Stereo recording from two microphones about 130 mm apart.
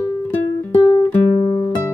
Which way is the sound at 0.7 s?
30° left (ahead or behind).